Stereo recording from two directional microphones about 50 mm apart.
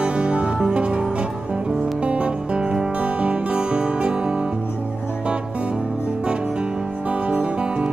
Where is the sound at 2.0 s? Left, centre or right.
Right.